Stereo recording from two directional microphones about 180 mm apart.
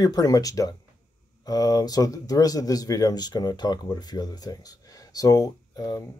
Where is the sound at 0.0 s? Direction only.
20° left (ahead or behind).